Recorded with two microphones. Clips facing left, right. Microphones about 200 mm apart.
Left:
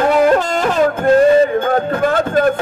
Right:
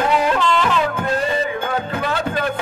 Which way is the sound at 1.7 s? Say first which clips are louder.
Left 7 dB; 50° left (ahead or behind).